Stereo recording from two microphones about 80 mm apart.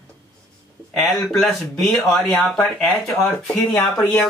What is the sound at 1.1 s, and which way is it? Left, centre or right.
Speech, centre.